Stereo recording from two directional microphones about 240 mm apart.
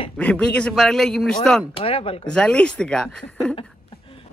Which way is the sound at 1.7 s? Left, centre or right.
Left.